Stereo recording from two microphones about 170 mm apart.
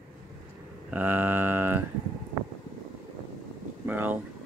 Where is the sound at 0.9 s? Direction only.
10° right (ahead or behind).